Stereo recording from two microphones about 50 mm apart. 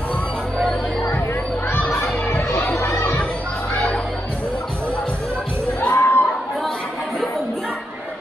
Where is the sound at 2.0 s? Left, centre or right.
Left.